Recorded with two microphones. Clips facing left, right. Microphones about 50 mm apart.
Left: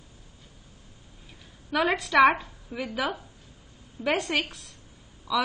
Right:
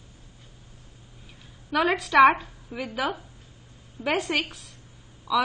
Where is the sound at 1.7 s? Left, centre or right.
Centre.